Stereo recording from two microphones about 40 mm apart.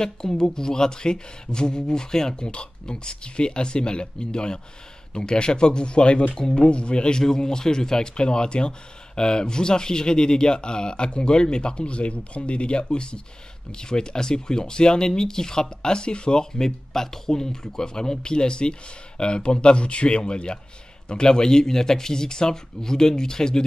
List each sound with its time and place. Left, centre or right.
0.0 s speech: centre